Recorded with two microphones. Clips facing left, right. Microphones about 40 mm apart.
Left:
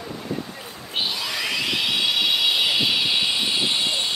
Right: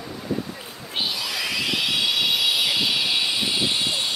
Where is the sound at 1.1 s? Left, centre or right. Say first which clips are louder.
Left 1 dB; centre.